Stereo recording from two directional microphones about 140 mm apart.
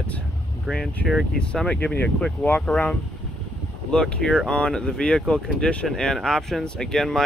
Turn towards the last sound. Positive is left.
turn(degrees=5)  # may be behind; listen again after turning